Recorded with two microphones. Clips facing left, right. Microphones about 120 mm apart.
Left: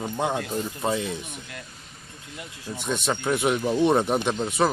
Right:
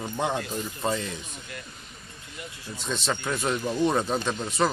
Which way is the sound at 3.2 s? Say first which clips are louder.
Left 4 dB; 15° left (ahead or behind).